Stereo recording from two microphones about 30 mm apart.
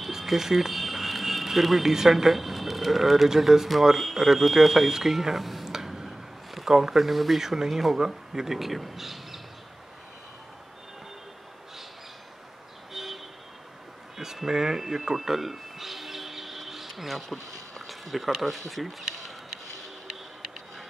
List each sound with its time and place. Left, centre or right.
0.2 s speech: centre
5.7 s tick-tock: centre
6.0 s a sound: centre
7.4 s speech: centre
12.9 s vehicle: centre
14.1 s speech: centre
15.1 s music: centre
17.8 s speech: centre
19.0 s a sound: centre